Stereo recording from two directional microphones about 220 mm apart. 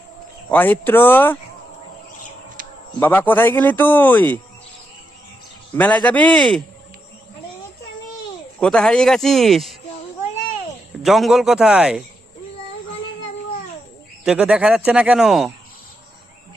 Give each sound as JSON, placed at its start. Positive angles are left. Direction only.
{"t": 0.5, "sound": "speech", "side_deg": 10}
{"t": 2.6, "sound": "a sound", "side_deg": -40}
{"t": 3.0, "sound": "speech", "side_deg": 10}
{"t": 5.8, "sound": "speech", "side_deg": 5}
{"t": 8.5, "sound": "speech", "side_deg": 5}
{"t": 11.0, "sound": "speech", "side_deg": 0}
{"t": 14.2, "sound": "speech", "side_deg": -5}